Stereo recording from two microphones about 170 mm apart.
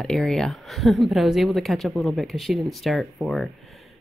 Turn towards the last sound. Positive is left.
turn(degrees=0)  # may be behind; listen again after turning